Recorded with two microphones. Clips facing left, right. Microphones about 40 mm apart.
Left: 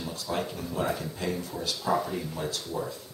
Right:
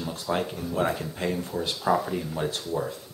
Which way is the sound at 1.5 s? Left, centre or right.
Right.